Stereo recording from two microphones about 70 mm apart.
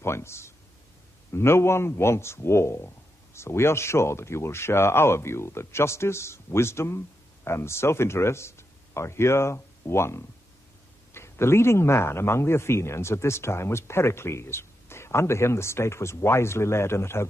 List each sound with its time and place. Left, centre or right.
0.0 s a man's voice: left